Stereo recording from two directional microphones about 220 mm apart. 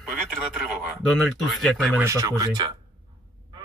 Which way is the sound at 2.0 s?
15° right (ahead or behind).